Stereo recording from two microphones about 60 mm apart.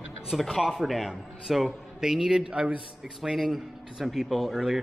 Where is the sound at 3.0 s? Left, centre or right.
Centre.